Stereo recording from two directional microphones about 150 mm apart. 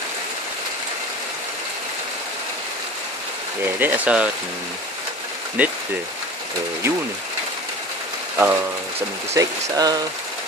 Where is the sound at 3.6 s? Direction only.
10° right (ahead or behind).